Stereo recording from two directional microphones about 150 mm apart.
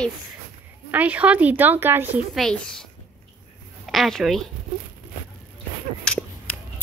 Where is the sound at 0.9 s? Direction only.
10° right (ahead or behind).